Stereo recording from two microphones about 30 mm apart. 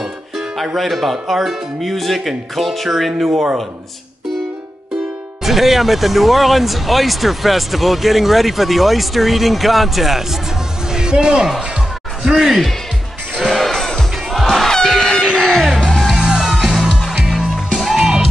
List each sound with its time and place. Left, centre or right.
0.7 s speech: centre
5.4 s speech: centre
10.9 s music: right
12.2 s speech: centre
13.6 s music: centre
14.3 s music: centre
16.1 s music: centre